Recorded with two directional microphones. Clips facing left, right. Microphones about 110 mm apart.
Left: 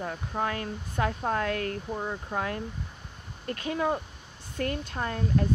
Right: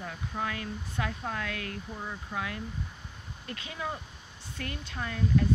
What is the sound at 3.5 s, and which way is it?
Speech, 50° left (ahead or behind).